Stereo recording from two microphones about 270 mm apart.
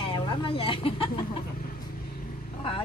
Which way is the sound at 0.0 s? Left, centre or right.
Centre.